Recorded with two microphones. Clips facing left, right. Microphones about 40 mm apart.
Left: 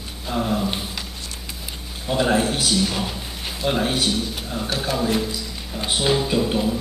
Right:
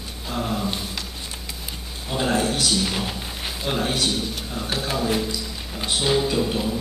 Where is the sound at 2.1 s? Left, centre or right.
Centre.